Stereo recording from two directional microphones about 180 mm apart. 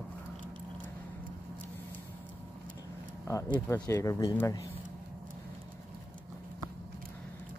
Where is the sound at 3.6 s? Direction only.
15° left (ahead or behind).